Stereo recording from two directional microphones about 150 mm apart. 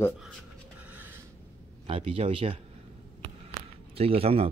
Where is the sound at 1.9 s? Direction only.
40° right (ahead or behind).